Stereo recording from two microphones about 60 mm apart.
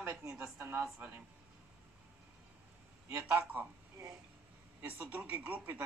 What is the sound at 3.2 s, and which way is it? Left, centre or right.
Speech, right.